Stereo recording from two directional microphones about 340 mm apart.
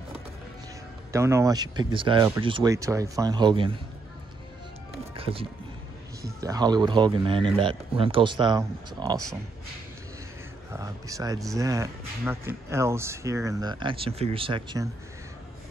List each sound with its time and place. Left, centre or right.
1.1 s speech: centre
5.1 s speech: centre
10.7 s speech: centre